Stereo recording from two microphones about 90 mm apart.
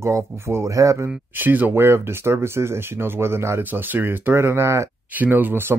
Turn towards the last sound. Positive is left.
turn(degrees=-20)  # may be behind; listen again after turning